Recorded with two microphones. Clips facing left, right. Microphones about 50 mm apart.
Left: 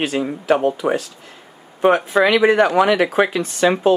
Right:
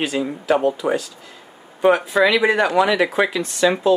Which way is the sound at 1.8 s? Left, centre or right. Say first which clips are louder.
Left 1 dB; left.